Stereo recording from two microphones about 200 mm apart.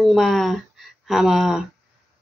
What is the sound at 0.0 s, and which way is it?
A woman's voice, centre (ahead or behind).